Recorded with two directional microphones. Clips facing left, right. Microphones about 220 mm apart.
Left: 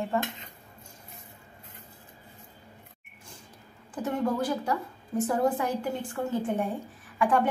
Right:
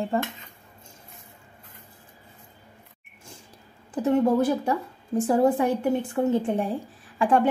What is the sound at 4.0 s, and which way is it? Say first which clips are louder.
Speech: right 7 dB; 25° right (ahead or behind).